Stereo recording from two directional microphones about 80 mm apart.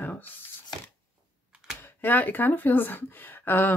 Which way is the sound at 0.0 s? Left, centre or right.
Left.